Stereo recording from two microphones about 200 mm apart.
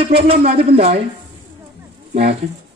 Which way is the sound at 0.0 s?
30° right (ahead or behind).